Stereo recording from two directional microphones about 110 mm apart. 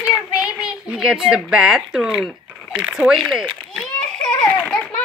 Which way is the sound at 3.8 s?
5° left (ahead or behind).